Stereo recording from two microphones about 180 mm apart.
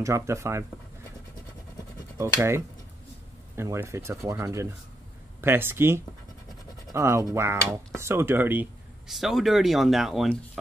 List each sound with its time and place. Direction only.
0.0 s speech: 15° right (ahead or behind)
2.1 s speech: 15° right (ahead or behind)